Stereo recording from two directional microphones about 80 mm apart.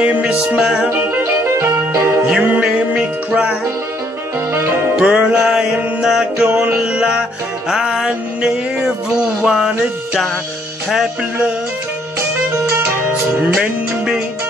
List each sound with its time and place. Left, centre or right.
0.0 s music: centre
0.9 s music: right
2.2 s music: centre
4.9 s music: centre
13.6 s music: centre